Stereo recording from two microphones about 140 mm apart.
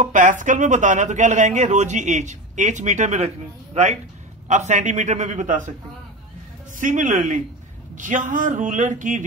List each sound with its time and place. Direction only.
0.0 s speech: 65° right (ahead or behind)
6.8 s a man's voice: 65° right (ahead or behind)